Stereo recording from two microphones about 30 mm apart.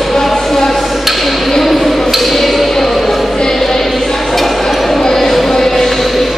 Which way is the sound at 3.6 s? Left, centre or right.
Centre.